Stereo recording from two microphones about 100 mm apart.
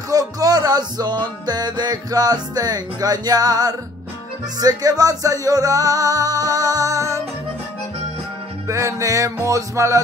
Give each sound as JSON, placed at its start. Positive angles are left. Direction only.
{"t": 0.1, "sound": "music", "side_deg": -35}
{"t": 8.6, "sound": "music", "side_deg": -30}